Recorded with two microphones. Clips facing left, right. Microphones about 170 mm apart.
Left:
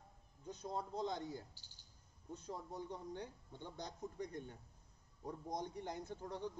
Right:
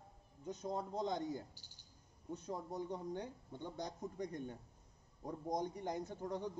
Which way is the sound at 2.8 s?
15° right (ahead or behind).